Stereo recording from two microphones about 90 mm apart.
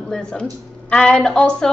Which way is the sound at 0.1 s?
10° left (ahead or behind).